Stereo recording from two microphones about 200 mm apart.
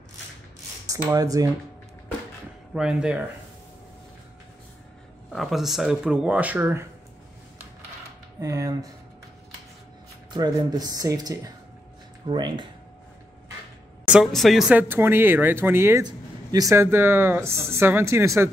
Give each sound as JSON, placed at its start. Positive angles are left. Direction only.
{"t": 0.8, "sound": "speech", "side_deg": -15}
{"t": 2.7, "sound": "speech", "side_deg": -5}
{"t": 5.3, "sound": "speech", "side_deg": 0}
{"t": 8.4, "sound": "speech", "side_deg": -15}
{"t": 10.3, "sound": "speech", "side_deg": -20}
{"t": 14.0, "sound": "speech", "side_deg": -5}